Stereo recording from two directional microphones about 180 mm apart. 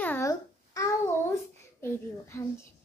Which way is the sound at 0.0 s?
15° left (ahead or behind).